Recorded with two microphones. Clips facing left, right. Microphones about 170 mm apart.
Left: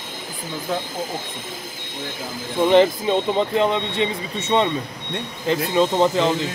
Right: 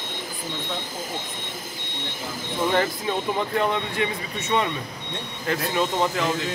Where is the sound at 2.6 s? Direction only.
20° left (ahead or behind).